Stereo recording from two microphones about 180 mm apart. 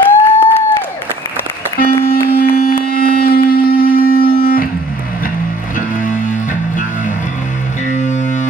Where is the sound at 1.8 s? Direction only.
55° left (ahead or behind).